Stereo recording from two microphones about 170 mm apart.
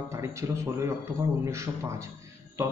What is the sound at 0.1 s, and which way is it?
A man's voice, 15° right (ahead or behind).